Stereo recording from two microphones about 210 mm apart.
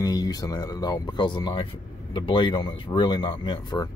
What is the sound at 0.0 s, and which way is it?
Speech, 15° left (ahead or behind).